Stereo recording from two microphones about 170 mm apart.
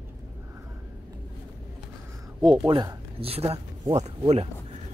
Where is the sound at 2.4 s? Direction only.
25° right (ahead or behind); by 4.4 s 40° right (ahead or behind).